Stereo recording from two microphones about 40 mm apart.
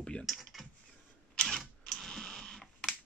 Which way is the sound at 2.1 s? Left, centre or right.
Centre.